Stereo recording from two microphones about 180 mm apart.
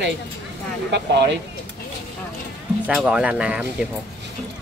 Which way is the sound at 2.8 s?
5° right (ahead or behind).